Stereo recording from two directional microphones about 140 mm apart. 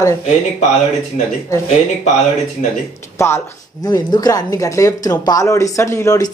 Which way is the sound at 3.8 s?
30° left (ahead or behind).